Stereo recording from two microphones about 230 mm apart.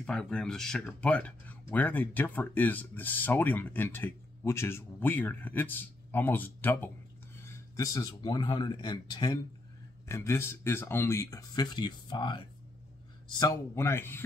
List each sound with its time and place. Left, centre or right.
0.0 s speech: centre